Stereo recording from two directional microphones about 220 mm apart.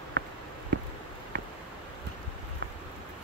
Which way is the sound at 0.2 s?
50° right (ahead or behind).